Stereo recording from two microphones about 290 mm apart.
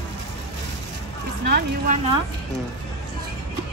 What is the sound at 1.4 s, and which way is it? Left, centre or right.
Speech, right.